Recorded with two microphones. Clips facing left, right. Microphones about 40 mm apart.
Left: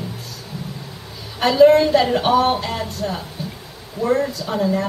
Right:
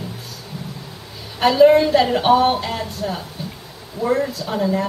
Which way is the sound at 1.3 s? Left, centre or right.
Centre.